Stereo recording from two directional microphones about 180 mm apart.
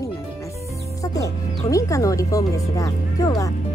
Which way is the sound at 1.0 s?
20° left (ahead or behind).